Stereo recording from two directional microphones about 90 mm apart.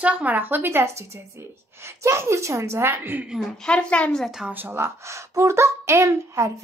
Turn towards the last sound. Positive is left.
turn(degrees=-35)  # may be behind; listen again after turning